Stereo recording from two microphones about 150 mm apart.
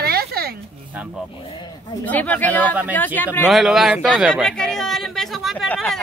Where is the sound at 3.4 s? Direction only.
Centre (ahead or behind).